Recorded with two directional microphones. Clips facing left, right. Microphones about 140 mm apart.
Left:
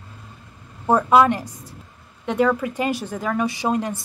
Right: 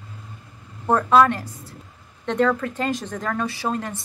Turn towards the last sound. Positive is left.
turn(degrees=15)  # may be behind; listen again after turning